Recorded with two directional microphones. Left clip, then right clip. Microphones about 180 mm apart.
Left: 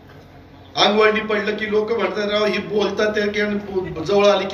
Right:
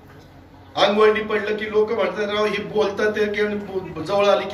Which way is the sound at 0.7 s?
50° left (ahead or behind).